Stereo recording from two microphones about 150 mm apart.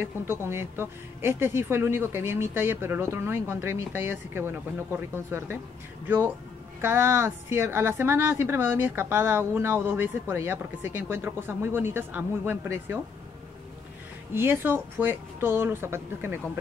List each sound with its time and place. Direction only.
0.0 s speech: 15° right (ahead or behind)
14.3 s speech: 15° right (ahead or behind)